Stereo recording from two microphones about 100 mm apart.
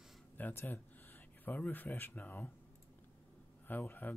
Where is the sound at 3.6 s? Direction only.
20° left (ahead or behind).